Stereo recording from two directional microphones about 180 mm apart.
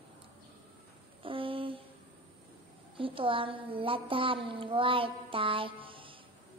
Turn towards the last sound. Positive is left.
turn(degrees=-30)  # may be behind; listen again after turning